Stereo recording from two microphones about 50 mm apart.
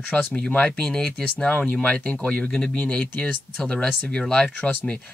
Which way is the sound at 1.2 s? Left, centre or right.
Left.